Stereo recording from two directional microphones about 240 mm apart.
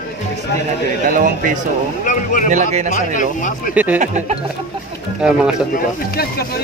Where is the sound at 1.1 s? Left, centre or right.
Right.